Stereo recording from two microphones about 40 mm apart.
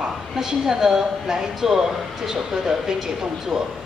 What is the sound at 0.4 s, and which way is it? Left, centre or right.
A woman's voice, centre.